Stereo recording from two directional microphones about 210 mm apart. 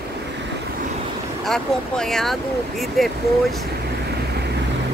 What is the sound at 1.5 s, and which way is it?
Speech, centre (ahead or behind).